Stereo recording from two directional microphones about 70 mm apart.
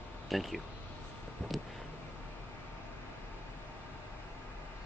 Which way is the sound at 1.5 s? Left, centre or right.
Centre.